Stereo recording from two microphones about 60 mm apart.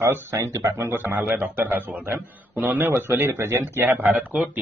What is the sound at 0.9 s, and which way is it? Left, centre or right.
A man's voice, right.